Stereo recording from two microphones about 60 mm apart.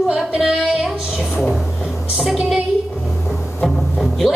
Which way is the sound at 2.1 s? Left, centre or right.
Centre.